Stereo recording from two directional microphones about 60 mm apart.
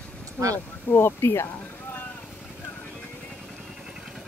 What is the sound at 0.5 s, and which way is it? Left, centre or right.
Speech, left.